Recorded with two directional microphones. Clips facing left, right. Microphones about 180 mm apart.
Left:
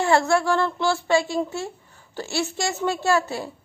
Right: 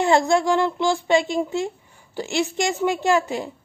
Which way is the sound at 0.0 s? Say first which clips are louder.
Right 2 dB; 20° right (ahead or behind).